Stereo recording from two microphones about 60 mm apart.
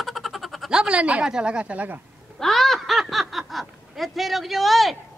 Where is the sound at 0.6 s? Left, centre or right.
Centre.